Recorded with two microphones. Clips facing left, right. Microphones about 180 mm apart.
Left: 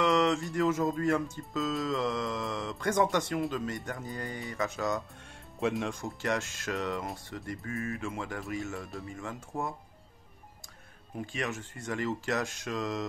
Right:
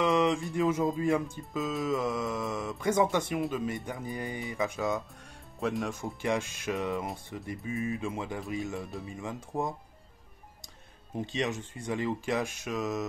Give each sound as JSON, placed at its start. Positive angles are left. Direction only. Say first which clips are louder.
{"t": 0.0, "sound": "a sound", "louder": "even", "side_deg": -15}
{"t": 0.9, "sound": "speech", "louder": "right 1 dB", "side_deg": -15}
{"t": 1.7, "sound": "speech", "louder": "right 1 dB", "side_deg": -5}
{"t": 5.6, "sound": "speech", "louder": "left 1 dB", "side_deg": 0}
{"t": 11.1, "sound": "speech", "louder": "right 3 dB", "side_deg": -20}